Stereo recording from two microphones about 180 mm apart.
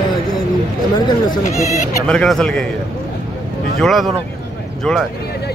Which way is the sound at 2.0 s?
5° left (ahead or behind).